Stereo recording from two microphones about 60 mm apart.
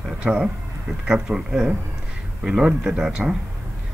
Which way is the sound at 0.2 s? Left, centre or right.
Centre.